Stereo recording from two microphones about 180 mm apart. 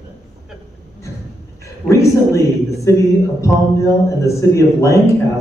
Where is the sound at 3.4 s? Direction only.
15° left (ahead or behind).